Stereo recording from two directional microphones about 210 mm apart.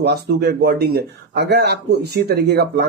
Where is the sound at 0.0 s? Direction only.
50° right (ahead or behind).